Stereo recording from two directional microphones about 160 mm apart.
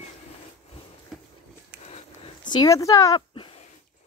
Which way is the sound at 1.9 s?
30° left (ahead or behind).